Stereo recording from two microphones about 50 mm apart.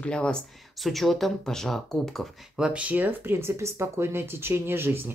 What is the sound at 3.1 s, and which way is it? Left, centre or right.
Speech, right.